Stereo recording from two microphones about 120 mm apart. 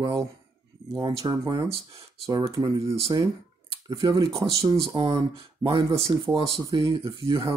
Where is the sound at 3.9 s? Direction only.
40° right (ahead or behind).